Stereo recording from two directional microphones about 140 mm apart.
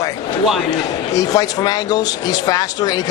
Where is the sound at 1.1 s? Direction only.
25° left (ahead or behind).